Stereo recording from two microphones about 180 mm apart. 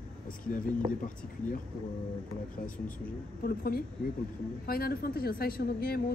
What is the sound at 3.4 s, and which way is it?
Speech, 55° left (ahead or behind).